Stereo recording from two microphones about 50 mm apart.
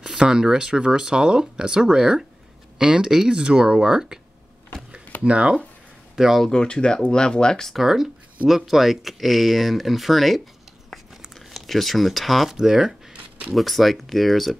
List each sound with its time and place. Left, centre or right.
0.0 s speech: centre
5.2 s speech: right
6.1 s speech: centre
6.4 s speech: centre
7.7 s speech: centre